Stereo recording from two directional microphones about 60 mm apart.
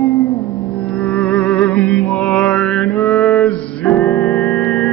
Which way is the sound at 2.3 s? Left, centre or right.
Centre.